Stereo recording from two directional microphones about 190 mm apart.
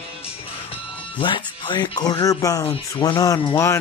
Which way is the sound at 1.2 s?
25° left (ahead or behind).